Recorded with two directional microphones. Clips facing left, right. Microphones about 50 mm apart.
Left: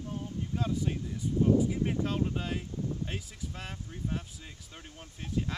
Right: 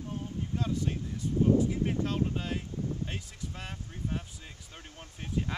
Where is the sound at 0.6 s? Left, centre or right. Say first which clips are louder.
Even; centre.